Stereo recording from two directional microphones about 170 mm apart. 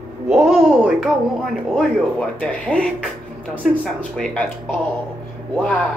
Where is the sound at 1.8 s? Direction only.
5° left (ahead or behind).